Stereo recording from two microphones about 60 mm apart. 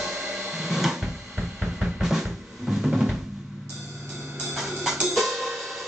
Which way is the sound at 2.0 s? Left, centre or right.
Centre.